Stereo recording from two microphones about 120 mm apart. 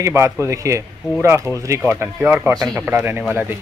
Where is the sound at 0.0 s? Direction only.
20° right (ahead or behind).